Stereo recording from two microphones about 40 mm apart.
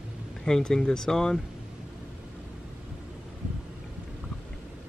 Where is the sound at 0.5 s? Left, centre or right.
Centre.